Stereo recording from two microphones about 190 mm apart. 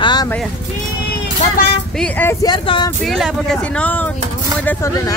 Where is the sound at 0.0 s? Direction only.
20° left (ahead or behind).